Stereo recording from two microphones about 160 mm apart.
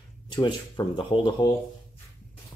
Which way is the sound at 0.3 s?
30° left (ahead or behind).